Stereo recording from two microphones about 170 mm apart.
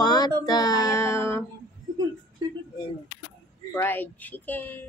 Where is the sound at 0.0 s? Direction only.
25° left (ahead or behind).